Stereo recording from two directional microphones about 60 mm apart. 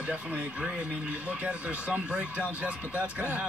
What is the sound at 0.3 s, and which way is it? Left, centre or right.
Speech, centre.